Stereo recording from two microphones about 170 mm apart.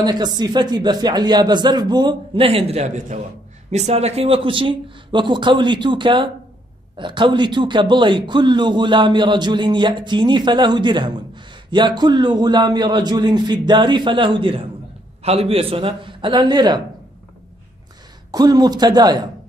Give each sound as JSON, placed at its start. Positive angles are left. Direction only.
{"t": 0.0, "sound": "a man's voice", "side_deg": -25}
{"t": 18.3, "sound": "a man's voice", "side_deg": -25}